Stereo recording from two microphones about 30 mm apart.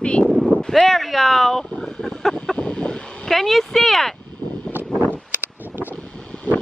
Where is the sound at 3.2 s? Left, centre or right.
Centre.